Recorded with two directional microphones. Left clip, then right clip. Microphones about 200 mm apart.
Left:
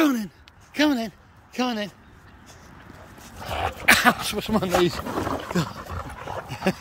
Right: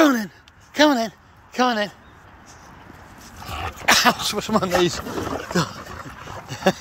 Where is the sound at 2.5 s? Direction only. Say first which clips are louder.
Right 3 dB; 20° left (ahead or behind).